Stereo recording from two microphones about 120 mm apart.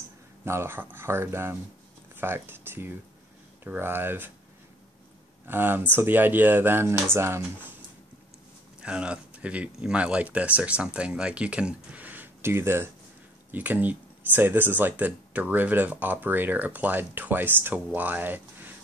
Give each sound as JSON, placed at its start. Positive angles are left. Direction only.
{"t": 0.5, "sound": "speech", "side_deg": -20}
{"t": 5.5, "sound": "speech", "side_deg": -15}
{"t": 8.8, "sound": "speech", "side_deg": -10}